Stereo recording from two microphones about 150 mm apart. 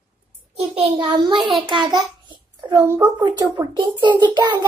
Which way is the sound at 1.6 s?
30° right (ahead or behind).